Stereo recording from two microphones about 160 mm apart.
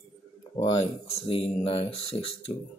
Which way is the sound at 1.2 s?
35° left (ahead or behind).